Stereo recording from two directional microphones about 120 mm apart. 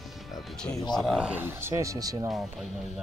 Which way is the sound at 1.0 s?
Centre (ahead or behind).